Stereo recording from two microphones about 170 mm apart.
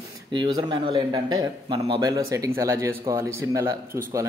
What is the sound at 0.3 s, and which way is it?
A man's voice, 25° right (ahead or behind).